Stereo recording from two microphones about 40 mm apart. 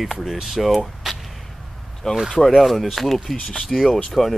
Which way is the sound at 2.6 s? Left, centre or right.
Centre.